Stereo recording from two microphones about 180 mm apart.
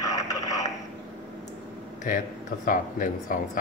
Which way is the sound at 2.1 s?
50° left (ahead or behind).